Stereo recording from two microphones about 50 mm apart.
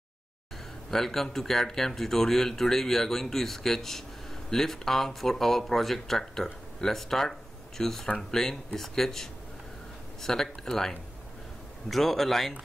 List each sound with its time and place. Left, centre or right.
0.8 s a man's voice: centre